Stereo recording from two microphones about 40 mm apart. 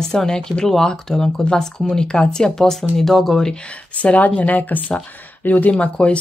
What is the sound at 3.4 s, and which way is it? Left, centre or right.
Speech, left.